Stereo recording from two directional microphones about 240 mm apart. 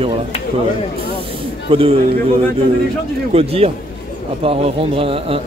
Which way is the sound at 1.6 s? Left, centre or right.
Right.